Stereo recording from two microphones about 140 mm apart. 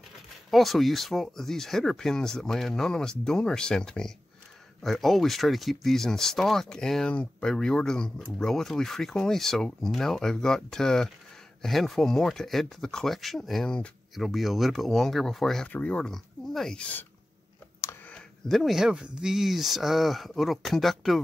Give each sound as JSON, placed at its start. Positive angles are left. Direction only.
{"t": 0.5, "sound": "speech", "side_deg": 0}
{"t": 18.1, "sound": "speech", "side_deg": 0}